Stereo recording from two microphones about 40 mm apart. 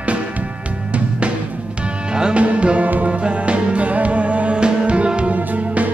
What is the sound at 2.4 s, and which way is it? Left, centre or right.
Music, right.